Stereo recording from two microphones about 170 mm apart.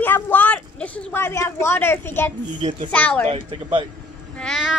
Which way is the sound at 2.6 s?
35° right (ahead or behind).